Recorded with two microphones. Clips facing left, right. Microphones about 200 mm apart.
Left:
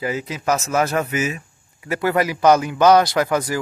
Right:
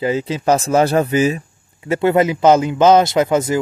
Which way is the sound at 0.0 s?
30° right (ahead or behind).